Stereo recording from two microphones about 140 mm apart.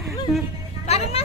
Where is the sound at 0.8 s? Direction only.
50° left (ahead or behind).